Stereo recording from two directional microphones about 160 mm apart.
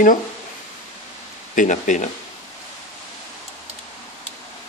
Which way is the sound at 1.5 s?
55° left (ahead or behind).